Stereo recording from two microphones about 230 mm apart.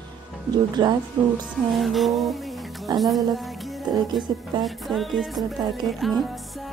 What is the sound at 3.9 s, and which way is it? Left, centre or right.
Speech, centre.